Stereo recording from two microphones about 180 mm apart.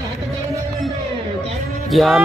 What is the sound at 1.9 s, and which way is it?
Music, centre (ahead or behind).